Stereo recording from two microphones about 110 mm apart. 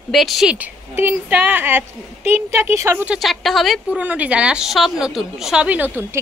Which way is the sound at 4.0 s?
15° right (ahead or behind).